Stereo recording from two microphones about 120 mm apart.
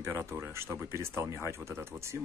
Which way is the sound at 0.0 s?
20° right (ahead or behind).